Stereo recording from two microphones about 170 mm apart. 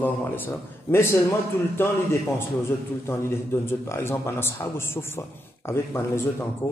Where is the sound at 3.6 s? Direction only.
15° left (ahead or behind).